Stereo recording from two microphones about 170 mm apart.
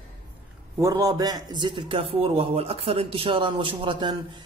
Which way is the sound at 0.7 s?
20° right (ahead or behind).